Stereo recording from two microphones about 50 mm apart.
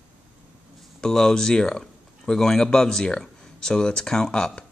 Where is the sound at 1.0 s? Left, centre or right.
Centre.